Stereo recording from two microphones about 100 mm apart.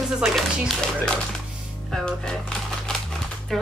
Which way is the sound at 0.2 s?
Centre (ahead or behind).